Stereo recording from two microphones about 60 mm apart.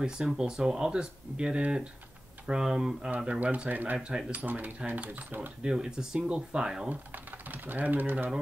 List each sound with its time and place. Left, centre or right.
0.0 s speech: centre
3.3 s speech: right
5.6 s speech: centre
7.4 s speech: right